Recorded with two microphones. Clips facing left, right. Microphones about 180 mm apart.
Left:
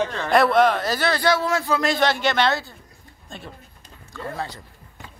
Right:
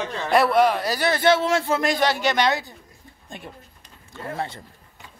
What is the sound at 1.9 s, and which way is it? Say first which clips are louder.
Speech: left 2 dB; 10° right (ahead or behind).